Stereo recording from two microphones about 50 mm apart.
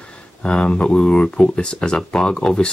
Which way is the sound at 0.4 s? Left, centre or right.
Centre.